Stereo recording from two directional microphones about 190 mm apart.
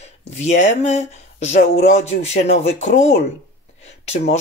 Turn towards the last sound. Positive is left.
turn(degrees=35)  # may be behind; listen again after turning